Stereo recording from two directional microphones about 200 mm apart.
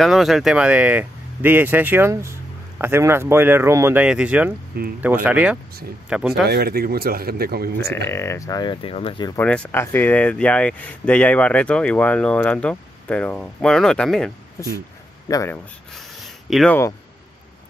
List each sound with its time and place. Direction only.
0.0 s speech: centre (ahead or behind)
6.4 s speech: 50° right (ahead or behind)
7.9 s speech: 10° left (ahead or behind)
9.4 s speech: 5° left (ahead or behind)
15.2 s speech: 15° left (ahead or behind)
16.4 s speech: centre (ahead or behind)